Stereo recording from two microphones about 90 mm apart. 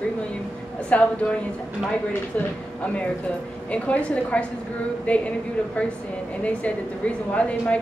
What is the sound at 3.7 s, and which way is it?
A woman's voice, 15° left (ahead or behind).